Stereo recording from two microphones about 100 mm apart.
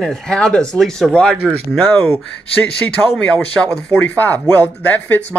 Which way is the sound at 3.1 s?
10° left (ahead or behind).